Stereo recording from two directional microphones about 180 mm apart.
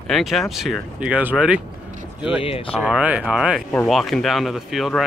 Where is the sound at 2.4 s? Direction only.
30° left (ahead or behind).